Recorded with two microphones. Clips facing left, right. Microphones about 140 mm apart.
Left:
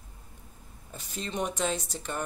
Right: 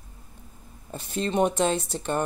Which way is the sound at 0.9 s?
60° right (ahead or behind).